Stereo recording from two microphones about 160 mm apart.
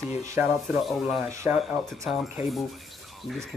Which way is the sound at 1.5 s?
Centre (ahead or behind).